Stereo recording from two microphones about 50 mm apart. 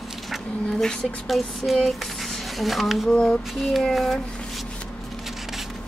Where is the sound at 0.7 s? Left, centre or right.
Centre.